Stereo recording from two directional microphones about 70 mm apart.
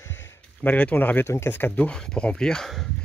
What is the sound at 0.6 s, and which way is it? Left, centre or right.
Speech, left.